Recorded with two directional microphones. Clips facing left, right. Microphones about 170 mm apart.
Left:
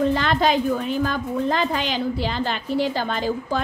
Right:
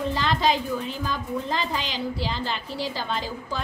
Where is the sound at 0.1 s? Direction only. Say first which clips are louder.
Left 4 dB; 60° left (ahead or behind).